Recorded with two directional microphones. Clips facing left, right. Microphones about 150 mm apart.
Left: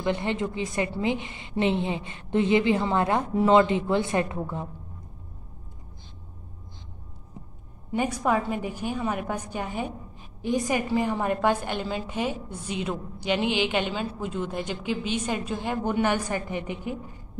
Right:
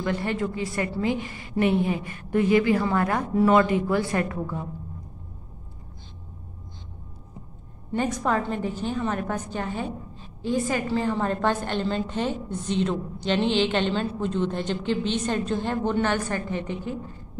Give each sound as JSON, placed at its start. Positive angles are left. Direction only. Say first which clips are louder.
{"t": 0.0, "sound": "a woman's voice", "louder": "even", "side_deg": 20}
{"t": 7.9, "sound": "a woman's voice", "louder": "even", "side_deg": 10}